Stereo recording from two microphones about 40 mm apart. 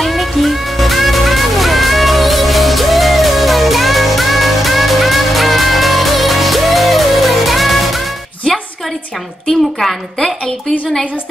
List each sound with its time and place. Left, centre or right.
0.0 s music: centre
8.5 s music: centre
9.5 s a woman's voice: centre